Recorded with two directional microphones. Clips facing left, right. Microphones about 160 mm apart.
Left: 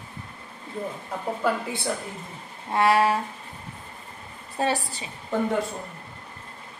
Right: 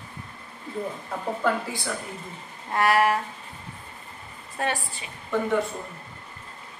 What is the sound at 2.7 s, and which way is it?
Speech, 25° left (ahead or behind).